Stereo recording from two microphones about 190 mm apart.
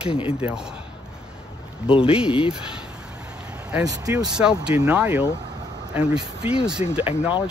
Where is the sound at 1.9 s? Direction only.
30° left (ahead or behind).